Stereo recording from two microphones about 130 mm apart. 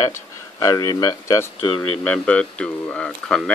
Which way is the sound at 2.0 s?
10° left (ahead or behind).